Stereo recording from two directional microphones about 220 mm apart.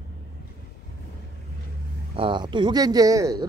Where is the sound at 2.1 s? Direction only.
20° right (ahead or behind).